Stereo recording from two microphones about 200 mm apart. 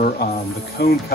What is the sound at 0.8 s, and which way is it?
Speech, 55° left (ahead or behind).